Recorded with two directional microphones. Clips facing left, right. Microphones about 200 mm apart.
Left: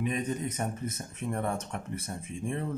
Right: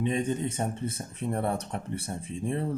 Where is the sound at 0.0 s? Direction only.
30° right (ahead or behind).